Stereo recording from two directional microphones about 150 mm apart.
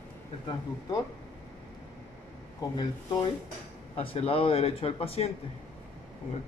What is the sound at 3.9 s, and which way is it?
Speech, 40° left (ahead or behind).